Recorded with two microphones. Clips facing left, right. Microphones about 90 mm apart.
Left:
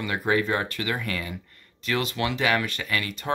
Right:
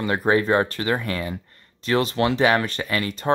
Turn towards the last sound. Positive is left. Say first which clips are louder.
# right 5 dB
turn(degrees=-35)  # may be behind; listen again after turning